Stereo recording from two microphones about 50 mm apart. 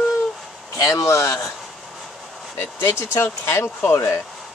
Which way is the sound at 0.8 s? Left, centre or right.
Left.